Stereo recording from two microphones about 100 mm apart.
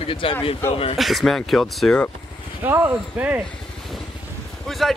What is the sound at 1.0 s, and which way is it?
Speech, centre (ahead or behind).